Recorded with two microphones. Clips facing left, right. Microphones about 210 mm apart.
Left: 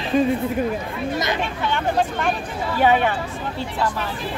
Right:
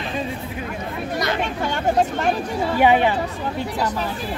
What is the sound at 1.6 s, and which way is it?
Speech, 40° right (ahead or behind).